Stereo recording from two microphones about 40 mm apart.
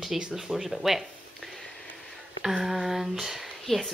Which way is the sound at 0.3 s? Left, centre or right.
Centre.